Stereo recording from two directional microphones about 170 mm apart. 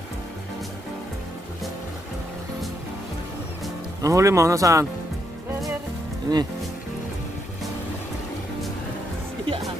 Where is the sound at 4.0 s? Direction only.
20° right (ahead or behind).